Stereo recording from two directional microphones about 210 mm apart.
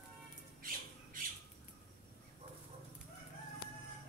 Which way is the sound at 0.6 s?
40° right (ahead or behind).